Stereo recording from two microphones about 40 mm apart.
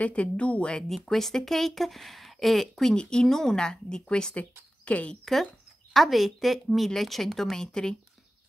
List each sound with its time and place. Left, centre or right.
0.0 s speech: left
0.7 s speech: centre
3.0 s speech: centre
4.4 s a woman's voice: left
5.2 s speech: centre